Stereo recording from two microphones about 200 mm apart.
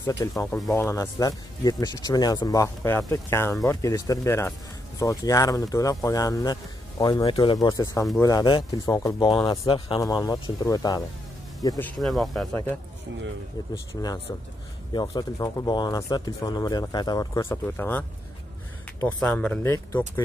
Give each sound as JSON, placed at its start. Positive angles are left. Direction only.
{"t": 0.0, "sound": "speech", "side_deg": 15}
{"t": 12.0, "sound": "speech", "side_deg": 0}
{"t": 13.9, "sound": "speech", "side_deg": 15}
{"t": 19.1, "sound": "speech", "side_deg": 5}